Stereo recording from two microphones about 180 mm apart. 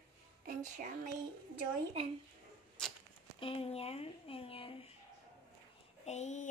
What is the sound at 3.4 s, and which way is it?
Speech, 30° left (ahead or behind).